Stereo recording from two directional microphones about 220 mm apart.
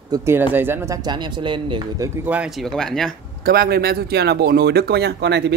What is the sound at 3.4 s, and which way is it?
Speech, 45° right (ahead or behind).